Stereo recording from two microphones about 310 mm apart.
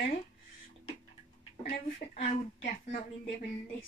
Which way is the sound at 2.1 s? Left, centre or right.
Left.